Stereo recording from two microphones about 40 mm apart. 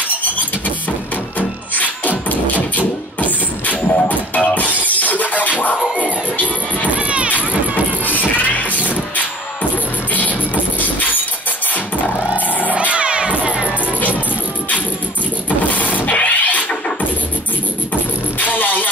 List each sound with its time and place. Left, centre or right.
1.8 s music: left
5.9 s crowd: left
7.0 s run: right
7.3 s vehicle: left
10.8 s dog: left
11.7 s vehicle: left
12.9 s children shouting: right
15.7 s engine starting: left
16.3 s music: left
18.4 s music: left